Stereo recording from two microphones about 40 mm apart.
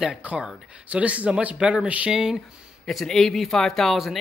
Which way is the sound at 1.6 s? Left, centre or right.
Right.